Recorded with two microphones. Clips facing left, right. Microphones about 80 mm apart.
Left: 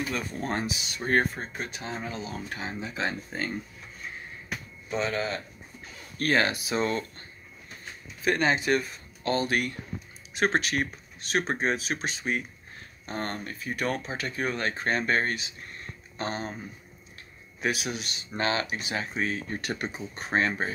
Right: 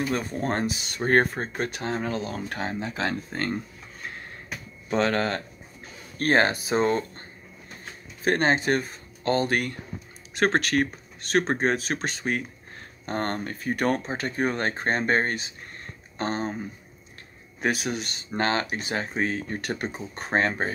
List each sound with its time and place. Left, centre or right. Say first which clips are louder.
0.1 s speech: right 4 dB; right
4.0 s a sound: right 2 dB; right
4.8 s speech: right 5 dB; right
6.1 s speech: right 4 dB; right
17.6 s speech: right 3 dB; right